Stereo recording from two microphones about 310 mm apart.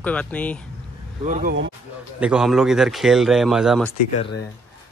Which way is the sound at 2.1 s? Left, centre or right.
Centre.